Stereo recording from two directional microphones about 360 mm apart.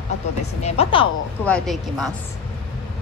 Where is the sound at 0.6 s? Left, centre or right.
Centre.